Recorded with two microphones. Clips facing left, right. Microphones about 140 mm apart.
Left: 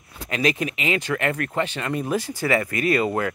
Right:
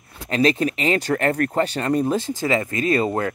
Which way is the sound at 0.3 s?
30° right (ahead or behind).